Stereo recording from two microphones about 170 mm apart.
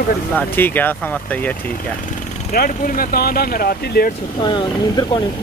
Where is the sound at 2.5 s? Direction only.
60° left (ahead or behind).